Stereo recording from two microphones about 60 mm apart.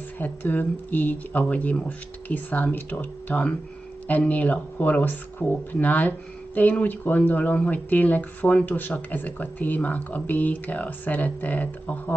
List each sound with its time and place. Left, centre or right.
0.2 s speech: left